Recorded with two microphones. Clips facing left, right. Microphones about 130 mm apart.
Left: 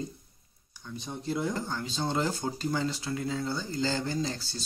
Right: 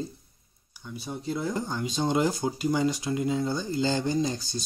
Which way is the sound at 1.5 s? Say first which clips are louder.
Right 4 dB; 15° right (ahead or behind).